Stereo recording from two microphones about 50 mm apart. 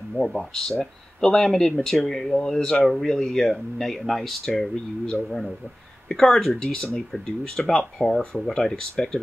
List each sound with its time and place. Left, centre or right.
0.1 s speech: centre
5.0 s speech: centre